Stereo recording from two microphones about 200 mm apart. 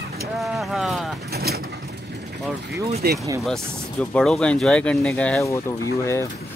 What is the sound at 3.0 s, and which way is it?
Speech, 50° right (ahead or behind).